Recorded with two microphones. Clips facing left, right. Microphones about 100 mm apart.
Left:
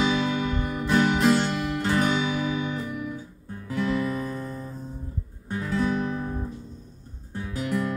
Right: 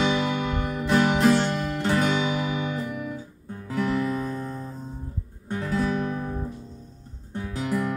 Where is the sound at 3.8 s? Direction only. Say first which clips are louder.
Right 1 dB; 35° right (ahead or behind).